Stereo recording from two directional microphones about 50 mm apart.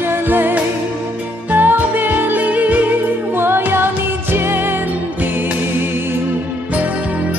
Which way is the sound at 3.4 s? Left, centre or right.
Right.